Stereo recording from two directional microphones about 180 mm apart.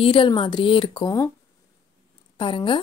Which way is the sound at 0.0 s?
30° left (ahead or behind).